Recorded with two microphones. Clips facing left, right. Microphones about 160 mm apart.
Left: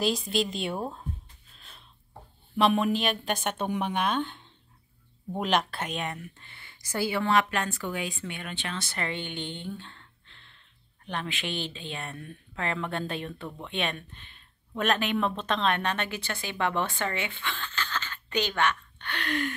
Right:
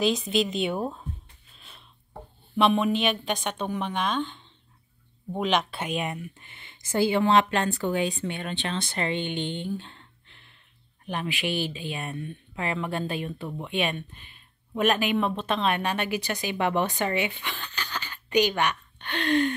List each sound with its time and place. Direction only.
0.0 s a woman's voice: centre (ahead or behind)
2.5 s a woman's voice: centre (ahead or behind)
6.1 s speech: 15° right (ahead or behind)